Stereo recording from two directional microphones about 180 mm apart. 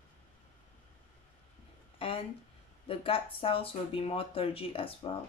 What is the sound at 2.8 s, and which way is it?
Speech, 30° left (ahead or behind).